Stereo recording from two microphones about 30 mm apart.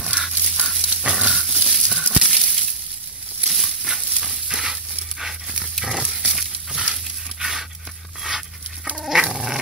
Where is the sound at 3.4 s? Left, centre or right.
Centre.